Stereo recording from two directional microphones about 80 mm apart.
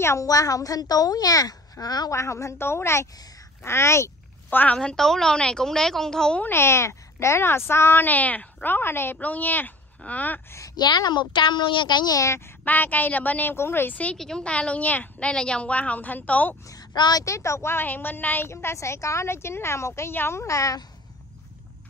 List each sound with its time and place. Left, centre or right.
0.0 s a woman's voice: left
2.1 s a woman's voice: left
4.5 s a woman's voice: left
4.7 s a woman's voice: centre
6.4 s a woman's voice: left
10.8 s a woman's voice: left
12.6 s a woman's voice: left
14.1 s a woman's voice: centre
16.9 s speech: left
17.2 s a woman's voice: left